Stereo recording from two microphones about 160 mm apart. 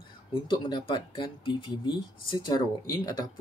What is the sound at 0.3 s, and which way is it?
Speech, 30° left (ahead or behind).